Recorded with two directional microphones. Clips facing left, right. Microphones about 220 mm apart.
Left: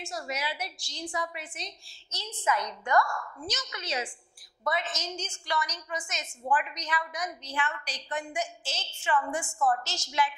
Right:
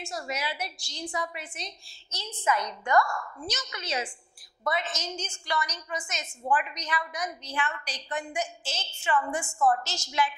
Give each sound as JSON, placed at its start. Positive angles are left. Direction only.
{"t": 0.3, "sound": "a woman's voice", "side_deg": -10}
{"t": 3.0, "sound": "a woman's voice", "side_deg": -25}
{"t": 3.4, "sound": "a woman's voice", "side_deg": -10}
{"t": 9.3, "sound": "a woman's voice", "side_deg": -20}
{"t": 9.8, "sound": "a woman's voice", "side_deg": -10}